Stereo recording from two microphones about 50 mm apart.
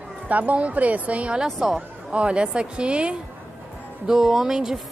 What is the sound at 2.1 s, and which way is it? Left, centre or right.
A woman's voice, right.